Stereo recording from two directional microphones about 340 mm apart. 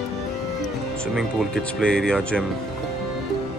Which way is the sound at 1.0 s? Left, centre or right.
Centre.